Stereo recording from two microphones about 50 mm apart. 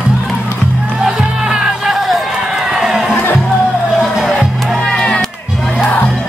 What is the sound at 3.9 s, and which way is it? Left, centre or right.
Music, centre.